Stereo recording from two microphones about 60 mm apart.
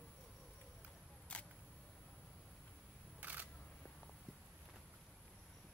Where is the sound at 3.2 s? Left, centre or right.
Right.